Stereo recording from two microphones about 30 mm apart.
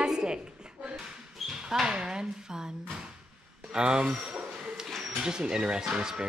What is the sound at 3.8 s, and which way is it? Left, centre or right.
Speech, right.